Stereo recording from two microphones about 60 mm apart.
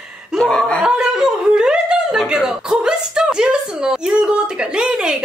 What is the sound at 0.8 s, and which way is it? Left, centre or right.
Speech, centre.